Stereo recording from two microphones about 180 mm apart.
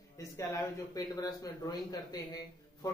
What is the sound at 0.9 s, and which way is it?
Speech, 20° left (ahead or behind).